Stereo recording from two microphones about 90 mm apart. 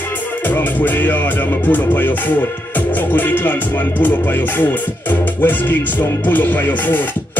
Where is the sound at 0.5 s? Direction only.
20° left (ahead or behind).